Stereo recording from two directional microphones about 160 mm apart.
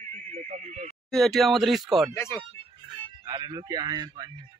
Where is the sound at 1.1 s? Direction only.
Centre (ahead or behind).